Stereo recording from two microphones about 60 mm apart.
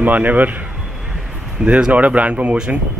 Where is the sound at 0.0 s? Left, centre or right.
Right.